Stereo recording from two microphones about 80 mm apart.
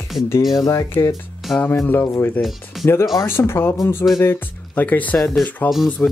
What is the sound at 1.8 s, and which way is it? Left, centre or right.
Speech, left.